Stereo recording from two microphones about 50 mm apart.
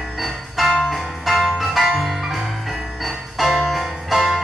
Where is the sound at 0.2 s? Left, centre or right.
Centre.